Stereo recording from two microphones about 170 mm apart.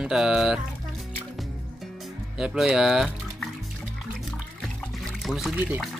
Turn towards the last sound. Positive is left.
turn(degrees=-10)  # may be behind; listen again after turning